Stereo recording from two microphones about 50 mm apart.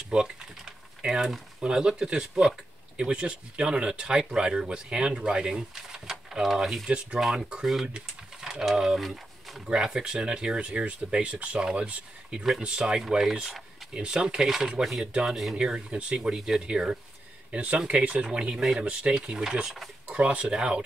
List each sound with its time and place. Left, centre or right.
0.1 s typing: centre
1.6 s speech: centre
6.9 s speech: centre
7.2 s speech: centre
15.5 s speech: centre
17.5 s speech: right